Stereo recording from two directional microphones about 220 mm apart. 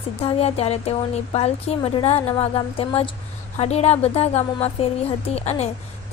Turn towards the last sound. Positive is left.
turn(degrees=30)  # may be behind; listen again after turning